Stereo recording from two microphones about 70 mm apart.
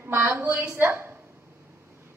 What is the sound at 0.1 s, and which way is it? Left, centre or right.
A woman's voice, right.